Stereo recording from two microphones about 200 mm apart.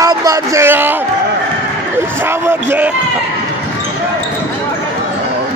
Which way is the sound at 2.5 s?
10° right (ahead or behind).